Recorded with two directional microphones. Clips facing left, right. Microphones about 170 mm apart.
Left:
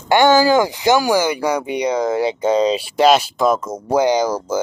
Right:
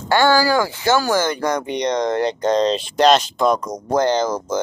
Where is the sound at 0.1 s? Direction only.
20° left (ahead or behind).